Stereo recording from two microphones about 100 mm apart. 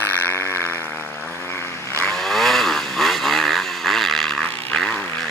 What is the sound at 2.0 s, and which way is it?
Vehicle, 5° left (ahead or behind).